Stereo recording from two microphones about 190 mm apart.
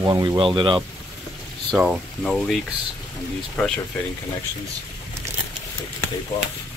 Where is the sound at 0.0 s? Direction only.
20° right (ahead or behind).